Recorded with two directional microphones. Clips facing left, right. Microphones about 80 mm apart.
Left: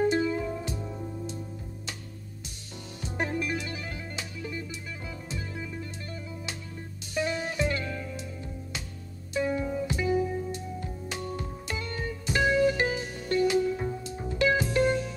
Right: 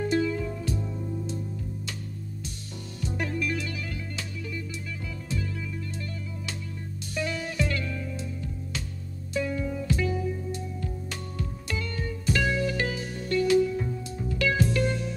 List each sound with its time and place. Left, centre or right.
0.0 s music: left
3.0 s music: left
7.2 s music: left
9.3 s music: left